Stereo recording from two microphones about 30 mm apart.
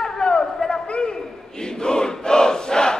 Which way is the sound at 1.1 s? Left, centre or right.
Left.